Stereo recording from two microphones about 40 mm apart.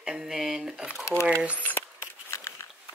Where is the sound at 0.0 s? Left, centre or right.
Centre.